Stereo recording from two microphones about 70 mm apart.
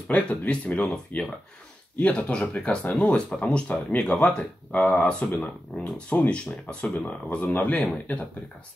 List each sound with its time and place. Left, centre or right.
0.1 s speech: centre